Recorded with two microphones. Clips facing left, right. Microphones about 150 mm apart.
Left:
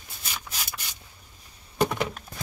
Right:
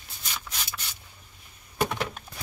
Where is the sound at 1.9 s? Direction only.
Centre (ahead or behind).